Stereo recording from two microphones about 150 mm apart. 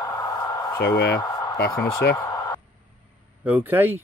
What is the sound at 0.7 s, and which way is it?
Speech, 90° left.